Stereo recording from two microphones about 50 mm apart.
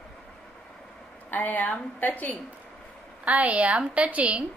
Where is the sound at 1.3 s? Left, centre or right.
Left.